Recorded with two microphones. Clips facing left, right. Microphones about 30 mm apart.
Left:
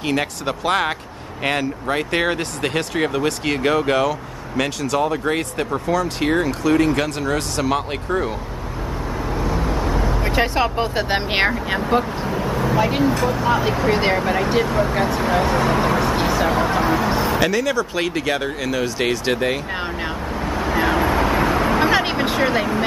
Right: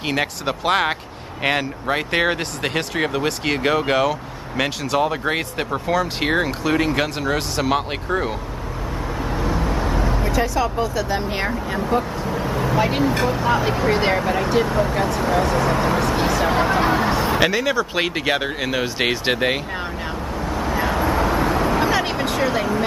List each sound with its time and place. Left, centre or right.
0.0 s speech: centre
9.2 s vehicle: centre
10.2 s speech: left
12.4 s speech: centre
13.1 s speech: right
13.4 s speech: centre
15.5 s speech: left
15.8 s speech: centre
17.3 s speech: centre
20.4 s vehicle: left